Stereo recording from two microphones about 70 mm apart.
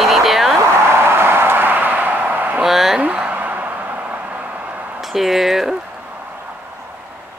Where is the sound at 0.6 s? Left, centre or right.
Right.